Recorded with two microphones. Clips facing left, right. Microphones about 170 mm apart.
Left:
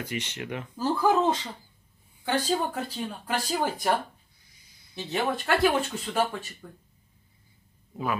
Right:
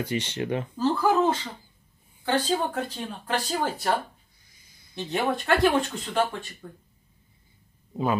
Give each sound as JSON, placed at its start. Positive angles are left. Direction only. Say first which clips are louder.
{"t": 0.0, "sound": "speech", "louder": "right 6 dB", "side_deg": -30}
{"t": 0.7, "sound": "a sound", "louder": "right 1 dB", "side_deg": 15}
{"t": 2.2, "sound": "speech", "louder": "right 2 dB", "side_deg": 10}
{"t": 4.9, "sound": "speech", "louder": "right 2 dB", "side_deg": 0}